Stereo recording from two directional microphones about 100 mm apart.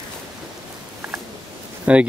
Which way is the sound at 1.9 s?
15° right (ahead or behind).